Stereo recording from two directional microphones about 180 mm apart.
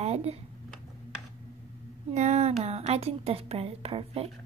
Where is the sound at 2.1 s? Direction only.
40° right (ahead or behind).